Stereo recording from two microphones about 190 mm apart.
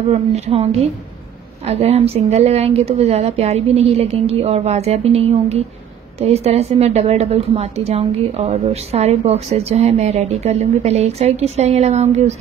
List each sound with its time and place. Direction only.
0.1 s a woman's voice: 35° right (ahead or behind)